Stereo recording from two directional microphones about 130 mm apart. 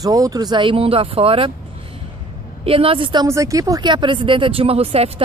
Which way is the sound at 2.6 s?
45° right (ahead or behind).